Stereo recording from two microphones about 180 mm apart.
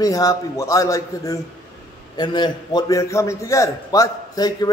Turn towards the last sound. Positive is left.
turn(degrees=20)  # may be behind; listen again after turning